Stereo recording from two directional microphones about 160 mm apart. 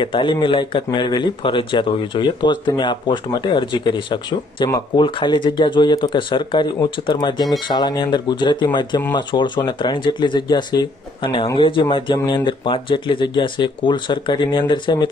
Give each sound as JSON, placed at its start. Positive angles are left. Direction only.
{"t": 0.0, "sound": "speech", "side_deg": 30}